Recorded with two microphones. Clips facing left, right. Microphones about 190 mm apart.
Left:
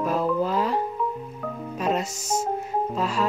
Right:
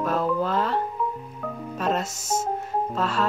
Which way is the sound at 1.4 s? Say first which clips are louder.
Even; 5° left (ahead or behind).